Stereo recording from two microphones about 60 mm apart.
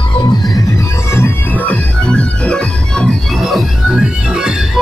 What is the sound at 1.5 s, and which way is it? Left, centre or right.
Music, left.